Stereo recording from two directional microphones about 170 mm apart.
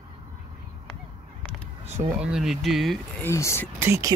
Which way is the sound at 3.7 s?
15° right (ahead or behind).